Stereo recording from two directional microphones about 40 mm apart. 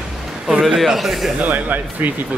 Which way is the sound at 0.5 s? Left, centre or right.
Centre.